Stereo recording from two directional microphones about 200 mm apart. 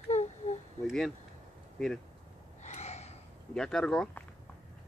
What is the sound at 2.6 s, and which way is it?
Gasp, 35° left (ahead or behind).